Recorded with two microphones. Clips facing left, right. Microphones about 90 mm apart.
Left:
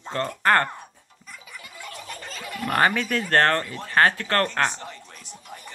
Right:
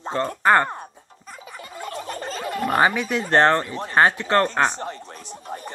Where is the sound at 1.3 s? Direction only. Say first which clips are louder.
Right 5 dB; 35° right (ahead or behind).